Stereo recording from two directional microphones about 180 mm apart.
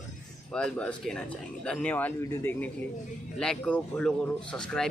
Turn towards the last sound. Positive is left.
turn(degrees=5)  # may be behind; listen again after turning